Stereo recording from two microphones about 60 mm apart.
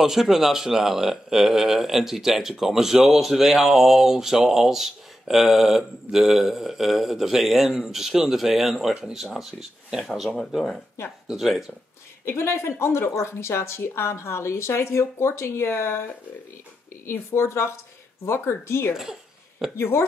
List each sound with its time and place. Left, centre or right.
0.0 s a man's voice: centre
12.3 s speech: left